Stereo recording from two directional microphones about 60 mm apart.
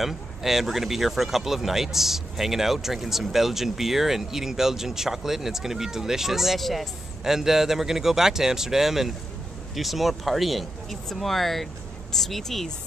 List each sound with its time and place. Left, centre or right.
0.0 s speech: centre